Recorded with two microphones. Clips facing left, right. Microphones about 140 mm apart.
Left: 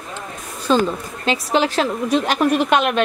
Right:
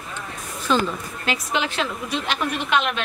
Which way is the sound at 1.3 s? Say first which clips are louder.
Left 7 dB; 35° left (ahead or behind).